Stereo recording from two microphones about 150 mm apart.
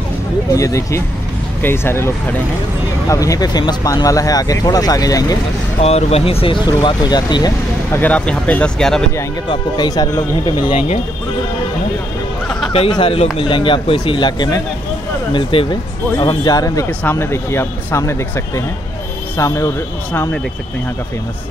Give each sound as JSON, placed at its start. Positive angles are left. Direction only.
{"t": 0.5, "sound": "speech", "side_deg": 20}
{"t": 5.8, "sound": "speech", "side_deg": 45}
{"t": 7.9, "sound": "speech", "side_deg": 10}
{"t": 9.5, "sound": "speech", "side_deg": 25}
{"t": 12.4, "sound": "speech", "side_deg": 0}
{"t": 12.7, "sound": "speech", "side_deg": 35}